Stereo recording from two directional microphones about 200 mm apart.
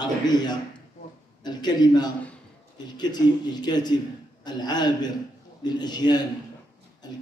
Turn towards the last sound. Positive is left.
turn(degrees=20)  # may be behind; listen again after turning